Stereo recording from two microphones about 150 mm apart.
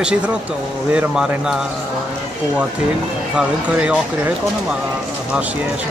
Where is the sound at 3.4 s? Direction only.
10° right (ahead or behind).